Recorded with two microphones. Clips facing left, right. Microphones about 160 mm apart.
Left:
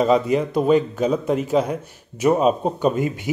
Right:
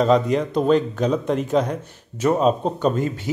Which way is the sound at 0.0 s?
5° left (ahead or behind).